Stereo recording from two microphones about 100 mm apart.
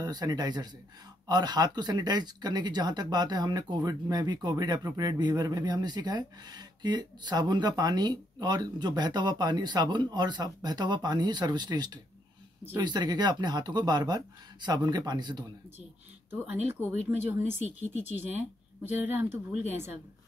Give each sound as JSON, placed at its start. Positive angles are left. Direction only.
{"t": 0.0, "sound": "speech", "side_deg": -45}
{"t": 16.3, "sound": "speech", "side_deg": -25}